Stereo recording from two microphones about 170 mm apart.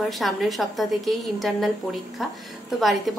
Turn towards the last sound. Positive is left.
turn(degrees=0)  # may be behind; listen again after turning